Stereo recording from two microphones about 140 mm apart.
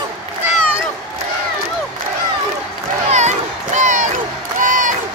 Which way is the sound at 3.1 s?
55° right (ahead or behind).